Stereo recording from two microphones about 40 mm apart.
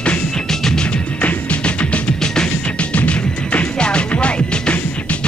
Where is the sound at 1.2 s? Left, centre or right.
Left.